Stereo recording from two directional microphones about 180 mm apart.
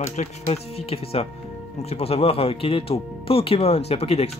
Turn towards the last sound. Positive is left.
turn(degrees=35)  # may be behind; listen again after turning